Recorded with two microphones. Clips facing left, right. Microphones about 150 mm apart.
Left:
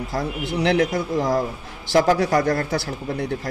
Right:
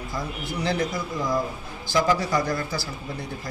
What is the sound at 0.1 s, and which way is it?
A man's voice, 70° left (ahead or behind).